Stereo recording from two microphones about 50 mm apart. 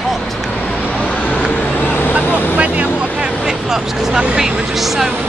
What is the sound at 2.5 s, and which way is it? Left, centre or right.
Vehicle, right.